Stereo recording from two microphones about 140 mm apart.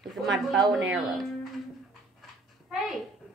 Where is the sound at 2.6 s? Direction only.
Centre (ahead or behind).